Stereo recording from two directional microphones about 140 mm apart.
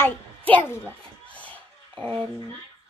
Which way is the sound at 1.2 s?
10° left (ahead or behind).